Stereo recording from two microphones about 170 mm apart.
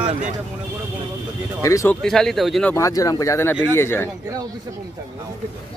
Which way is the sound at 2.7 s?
20° left (ahead or behind).